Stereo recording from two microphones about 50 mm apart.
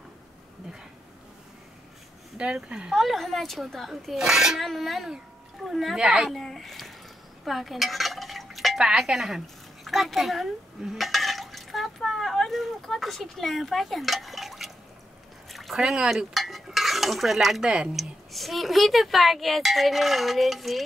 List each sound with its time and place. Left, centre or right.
2.3 s speech: centre
2.9 s a child's voice: centre
6.3 s speech: centre
7.4 s dishes: centre
8.8 s speech: centre
10.8 s a sound: centre
15.7 s speech: centre
16.3 s stir: centre
17.6 s speech: centre
17.9 s speech: centre